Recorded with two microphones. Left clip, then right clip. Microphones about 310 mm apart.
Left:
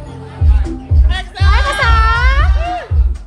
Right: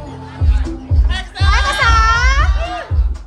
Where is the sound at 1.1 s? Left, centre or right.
Centre.